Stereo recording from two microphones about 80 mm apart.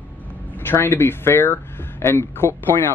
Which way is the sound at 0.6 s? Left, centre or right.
Left.